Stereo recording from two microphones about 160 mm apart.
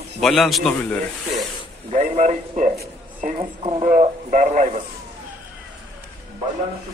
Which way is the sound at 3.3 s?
35° right (ahead or behind).